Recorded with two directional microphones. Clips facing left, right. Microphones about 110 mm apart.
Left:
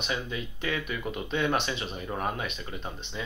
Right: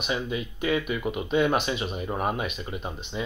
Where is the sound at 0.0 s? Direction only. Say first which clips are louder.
Right 4 dB; 15° right (ahead or behind).